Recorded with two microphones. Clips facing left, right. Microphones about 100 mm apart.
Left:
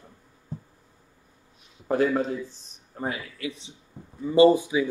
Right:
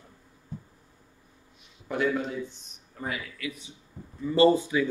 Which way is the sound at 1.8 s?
40° left (ahead or behind).